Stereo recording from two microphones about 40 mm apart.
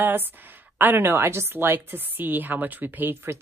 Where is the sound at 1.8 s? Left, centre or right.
Right.